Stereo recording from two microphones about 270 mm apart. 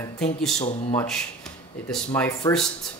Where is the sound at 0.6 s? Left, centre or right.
Left.